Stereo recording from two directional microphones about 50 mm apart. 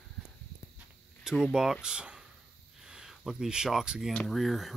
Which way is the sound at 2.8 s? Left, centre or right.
Centre.